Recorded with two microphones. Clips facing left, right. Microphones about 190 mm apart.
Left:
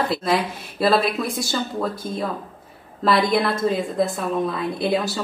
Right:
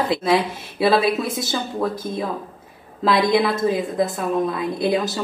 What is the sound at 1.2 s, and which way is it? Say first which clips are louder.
Speech: right 1 dB; 20° right (ahead or behind).